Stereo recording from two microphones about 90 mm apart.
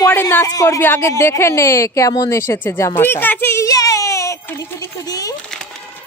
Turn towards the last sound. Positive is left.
turn(degrees=40)  # may be behind; listen again after turning